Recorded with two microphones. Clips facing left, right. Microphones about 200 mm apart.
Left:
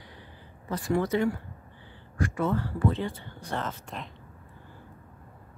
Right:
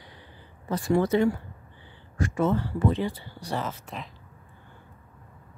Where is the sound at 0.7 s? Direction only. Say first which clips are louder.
Right 3 dB; 25° right (ahead or behind).